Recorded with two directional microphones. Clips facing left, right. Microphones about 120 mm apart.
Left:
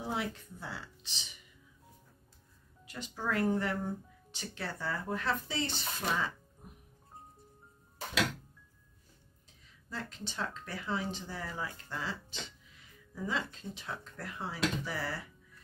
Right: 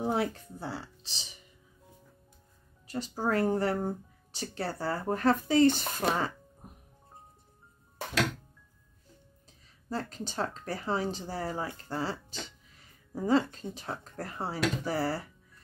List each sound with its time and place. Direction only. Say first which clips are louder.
0.0 s speech: right 7 dB; 45° right (ahead or behind)
2.9 s speech: right 6 dB; 35° right (ahead or behind)
9.8 s speech: right 7 dB; 40° right (ahead or behind)